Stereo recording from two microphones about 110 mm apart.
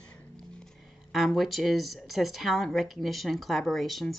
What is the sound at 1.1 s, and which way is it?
Speech, centre (ahead or behind).